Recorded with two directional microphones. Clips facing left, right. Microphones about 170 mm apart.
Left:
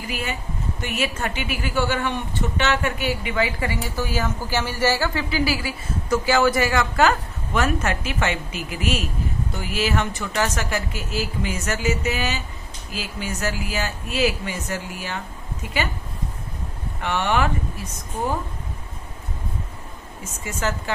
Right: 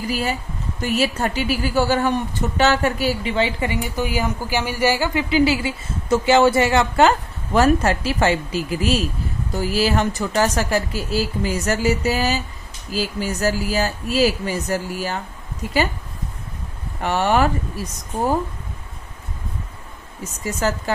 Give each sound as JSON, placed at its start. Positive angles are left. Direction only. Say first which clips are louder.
{"t": 0.1, "sound": "a woman's voice", "louder": "right 4 dB", "side_deg": -35}
{"t": 17.0, "sound": "a woman's voice", "louder": "right 4 dB", "side_deg": -40}
{"t": 20.2, "sound": "a woman's voice", "louder": "right 4 dB", "side_deg": -40}